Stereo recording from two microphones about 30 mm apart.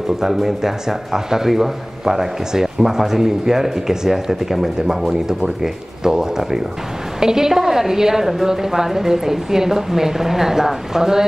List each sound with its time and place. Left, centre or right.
0.2 s a woman's voice: centre